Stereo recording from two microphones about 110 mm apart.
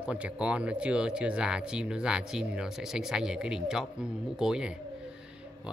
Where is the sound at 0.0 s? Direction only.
10° right (ahead or behind).